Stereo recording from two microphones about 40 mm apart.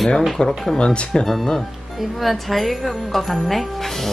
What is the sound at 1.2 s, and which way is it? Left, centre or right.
A woman's voice, centre.